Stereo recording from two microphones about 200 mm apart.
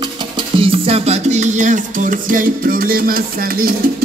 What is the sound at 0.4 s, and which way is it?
Music, 25° right (ahead or behind).